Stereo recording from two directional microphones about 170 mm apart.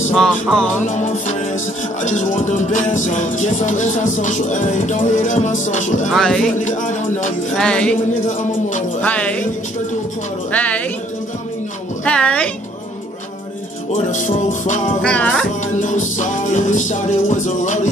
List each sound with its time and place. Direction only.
0.1 s music: 5° left (ahead or behind)
0.8 s music: 45° left (ahead or behind)
6.0 s music: 5° left (ahead or behind)
6.6 s music: 45° left (ahead or behind)
7.5 s music: 5° left (ahead or behind)
8.3 s music: 50° left (ahead or behind)
9.0 s a woman's voice: 10° left (ahead or behind)
10.5 s a woman's voice: 10° left (ahead or behind)
12.0 s a woman's voice: 5° left (ahead or behind)
14.1 s music: 45° left (ahead or behind)
15.0 s a woman's voice: 5° left (ahead or behind)
15.6 s music: 45° left (ahead or behind)